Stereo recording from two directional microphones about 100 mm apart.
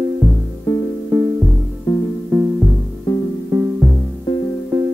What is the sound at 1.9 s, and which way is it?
Music, 35° left (ahead or behind).